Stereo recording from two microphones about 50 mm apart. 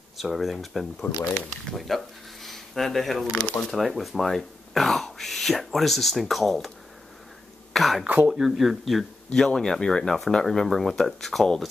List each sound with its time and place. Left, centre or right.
0.2 s speech: centre
1.0 s speech: left
1.8 s speech: centre
7.7 s throat clearing: centre
8.3 s speech: centre
9.3 s speech: centre